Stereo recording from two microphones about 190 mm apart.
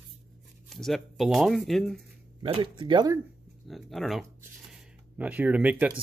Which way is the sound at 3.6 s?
Centre (ahead or behind).